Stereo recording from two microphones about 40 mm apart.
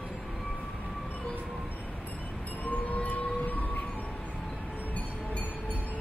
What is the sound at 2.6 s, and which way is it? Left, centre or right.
Train, left.